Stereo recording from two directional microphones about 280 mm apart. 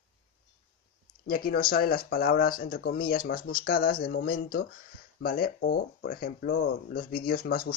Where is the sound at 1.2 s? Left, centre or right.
Left.